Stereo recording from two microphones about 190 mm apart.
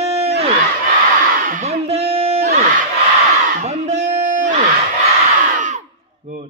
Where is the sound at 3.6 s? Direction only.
35° right (ahead or behind).